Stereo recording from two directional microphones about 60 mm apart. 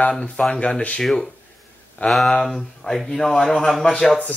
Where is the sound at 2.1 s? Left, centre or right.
Centre.